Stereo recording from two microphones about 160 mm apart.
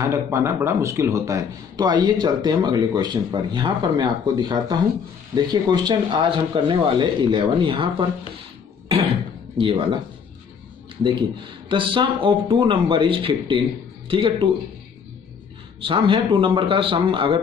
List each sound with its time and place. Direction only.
0.0 s a man's voice: 15° right (ahead or behind)
9.6 s speech: 35° right (ahead or behind)
11.7 s speech: 30° right (ahead or behind)
15.8 s speech: 30° right (ahead or behind)